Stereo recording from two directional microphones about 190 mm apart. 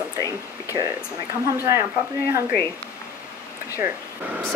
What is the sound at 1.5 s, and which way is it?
Speech, 15° right (ahead or behind).